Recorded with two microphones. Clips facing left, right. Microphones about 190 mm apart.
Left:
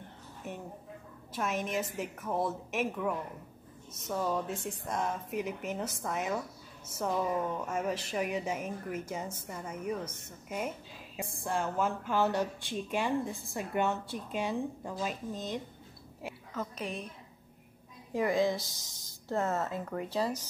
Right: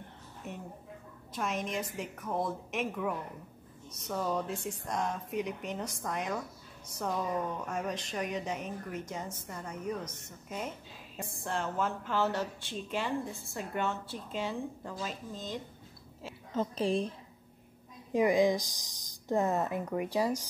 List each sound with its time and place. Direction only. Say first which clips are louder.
1.3 s speech: left 1 dB; 5° left (ahead or behind)
16.5 s a woman's voice: right 8 dB; 30° right (ahead or behind)
18.1 s speech: right 3 dB; 15° right (ahead or behind)